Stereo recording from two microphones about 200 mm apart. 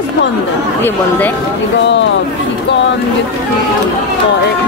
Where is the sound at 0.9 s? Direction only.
10° left (ahead or behind).